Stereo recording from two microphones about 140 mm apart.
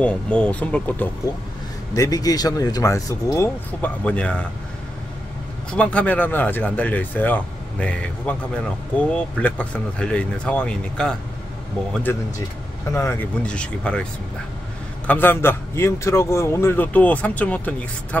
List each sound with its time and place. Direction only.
0.0 s a man's voice: 10° left (ahead or behind)
2.0 s speech: 25° left (ahead or behind)
4.0 s a man's voice: 10° left (ahead or behind)
5.7 s a man's voice: 10° left (ahead or behind)
13.4 s a man's voice: 5° left (ahead or behind)
15.0 s a man's voice: 15° left (ahead or behind)